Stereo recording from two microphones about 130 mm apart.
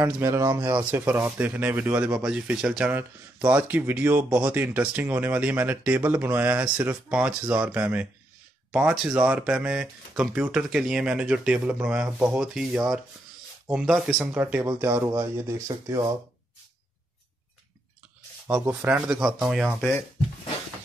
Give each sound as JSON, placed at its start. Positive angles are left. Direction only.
{"t": 0.0, "sound": "speech", "side_deg": -20}
{"t": 15.7, "sound": "speech", "side_deg": -35}
{"t": 18.5, "sound": "speech", "side_deg": -15}
{"t": 19.8, "sound": "speech", "side_deg": 10}